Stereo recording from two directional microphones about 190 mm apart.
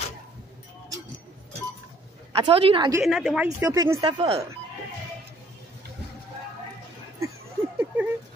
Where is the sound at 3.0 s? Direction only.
Centre (ahead or behind).